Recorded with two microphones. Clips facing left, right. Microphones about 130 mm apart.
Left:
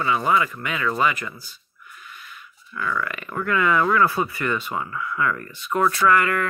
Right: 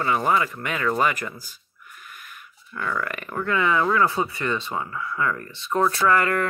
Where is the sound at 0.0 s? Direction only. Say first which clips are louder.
Left 1 dB; 40° right (ahead or behind).